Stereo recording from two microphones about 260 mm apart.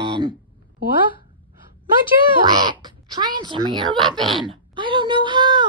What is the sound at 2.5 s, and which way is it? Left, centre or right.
Speech, centre.